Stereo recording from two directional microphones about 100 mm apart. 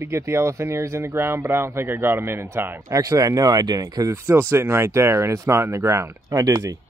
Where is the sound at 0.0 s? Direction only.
25° right (ahead or behind).